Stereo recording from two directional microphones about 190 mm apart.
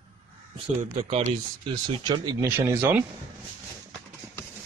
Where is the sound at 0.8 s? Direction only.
35° right (ahead or behind); by 3.0 s 10° right (ahead or behind).